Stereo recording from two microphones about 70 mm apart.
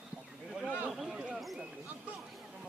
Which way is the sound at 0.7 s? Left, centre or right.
Centre.